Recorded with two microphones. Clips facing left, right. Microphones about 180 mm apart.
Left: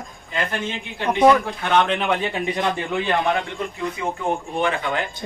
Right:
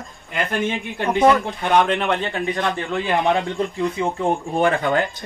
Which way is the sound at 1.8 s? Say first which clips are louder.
Right 1 dB; centre (ahead or behind).